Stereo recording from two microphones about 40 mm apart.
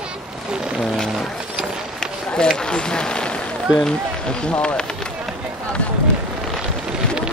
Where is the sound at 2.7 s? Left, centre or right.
Centre.